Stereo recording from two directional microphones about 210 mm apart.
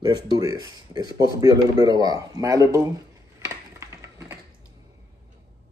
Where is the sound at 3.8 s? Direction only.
15° right (ahead or behind).